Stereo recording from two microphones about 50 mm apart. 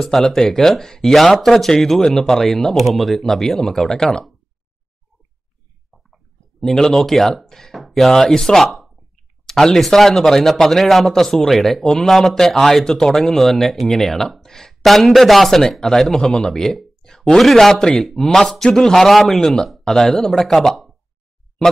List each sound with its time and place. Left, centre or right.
0.0 s speech: centre
6.6 s speech: centre